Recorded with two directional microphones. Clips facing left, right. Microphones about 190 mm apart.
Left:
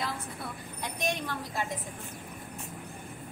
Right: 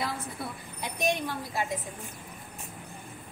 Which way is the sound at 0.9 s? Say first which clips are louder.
Right 4 dB; 10° right (ahead or behind).